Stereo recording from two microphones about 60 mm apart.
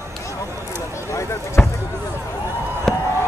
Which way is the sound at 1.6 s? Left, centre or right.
Left.